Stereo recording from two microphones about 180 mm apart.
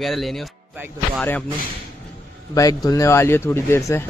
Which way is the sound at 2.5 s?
20° left (ahead or behind).